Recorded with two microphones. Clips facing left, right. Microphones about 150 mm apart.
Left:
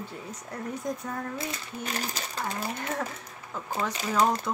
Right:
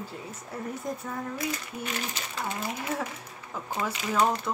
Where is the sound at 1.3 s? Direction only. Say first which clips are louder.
Right 2 dB; 35° left (ahead or behind).